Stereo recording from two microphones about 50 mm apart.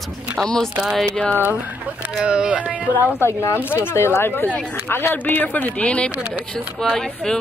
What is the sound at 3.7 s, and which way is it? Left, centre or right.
Speech, left.